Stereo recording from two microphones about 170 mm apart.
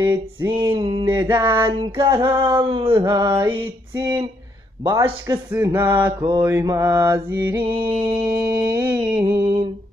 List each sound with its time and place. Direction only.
0.0 s speech: 15° right (ahead or behind)
0.7 s music: 25° right (ahead or behind)
1.2 s speech: 15° right (ahead or behind)
1.7 s music: 30° right (ahead or behind)
2.9 s speech: 20° right (ahead or behind)
7.6 s music: 25° right (ahead or behind)